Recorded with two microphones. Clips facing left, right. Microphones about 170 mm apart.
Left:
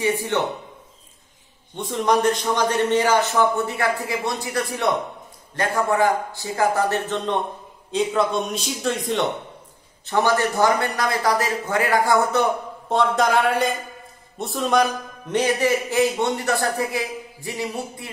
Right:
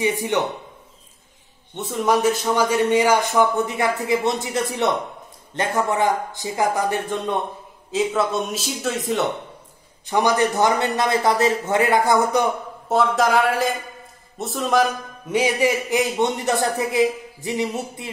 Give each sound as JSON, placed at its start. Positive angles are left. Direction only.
{"t": 0.0, "sound": "a man's voice", "side_deg": -15}
{"t": 1.8, "sound": "a man's voice", "side_deg": -5}
{"t": 10.0, "sound": "a man's voice", "side_deg": -15}